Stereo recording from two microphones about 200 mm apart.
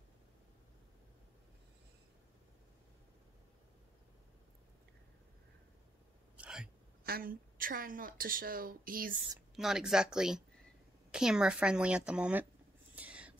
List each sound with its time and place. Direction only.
6.3 s hiccup: 5° right (ahead or behind)
7.1 s a woman's voice: 45° right (ahead or behind)
9.6 s a woman's voice: centre (ahead or behind)
12.9 s rodents: 5° right (ahead or behind)